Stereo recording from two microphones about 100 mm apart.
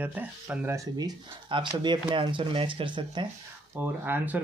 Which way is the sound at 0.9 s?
45° right (ahead or behind).